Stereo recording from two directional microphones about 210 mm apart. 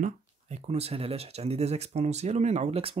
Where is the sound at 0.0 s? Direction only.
30° right (ahead or behind).